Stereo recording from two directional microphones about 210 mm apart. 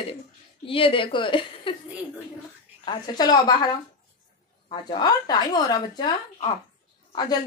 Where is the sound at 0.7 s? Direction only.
25° left (ahead or behind).